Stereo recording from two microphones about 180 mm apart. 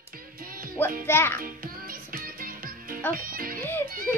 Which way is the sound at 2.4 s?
50° right (ahead or behind).